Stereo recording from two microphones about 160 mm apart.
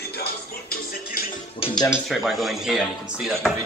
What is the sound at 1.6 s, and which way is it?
Music, 30° left (ahead or behind).